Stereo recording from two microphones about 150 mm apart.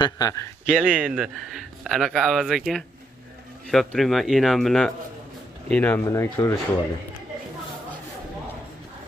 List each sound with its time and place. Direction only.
0.0 s speech: 25° left (ahead or behind)
0.7 s speech: 5° right (ahead or behind); by 6.0 s 10° left (ahead or behind)
6.0 s speech: 20° left (ahead or behind)